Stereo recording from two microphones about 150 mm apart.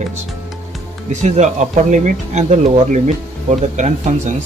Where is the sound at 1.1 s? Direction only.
50° right (ahead or behind).